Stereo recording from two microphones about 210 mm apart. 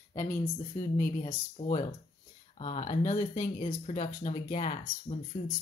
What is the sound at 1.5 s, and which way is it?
Speech, 30° left (ahead or behind).